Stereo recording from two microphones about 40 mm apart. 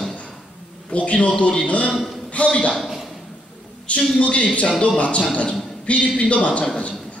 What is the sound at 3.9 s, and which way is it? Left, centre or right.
A man's voice, left.